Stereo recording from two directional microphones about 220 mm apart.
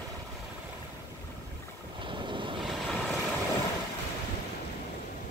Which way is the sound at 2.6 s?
Centre (ahead or behind).